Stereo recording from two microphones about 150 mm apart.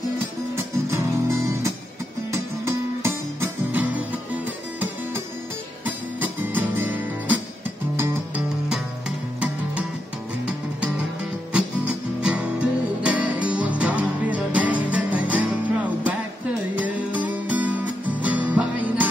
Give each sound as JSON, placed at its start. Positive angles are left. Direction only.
{"t": 0.6, "sound": "music", "side_deg": -20}
{"t": 2.6, "sound": "music", "side_deg": -15}
{"t": 5.9, "sound": "music", "side_deg": -10}
{"t": 12.2, "sound": "music", "side_deg": -5}
{"t": 16.7, "sound": "music", "side_deg": -10}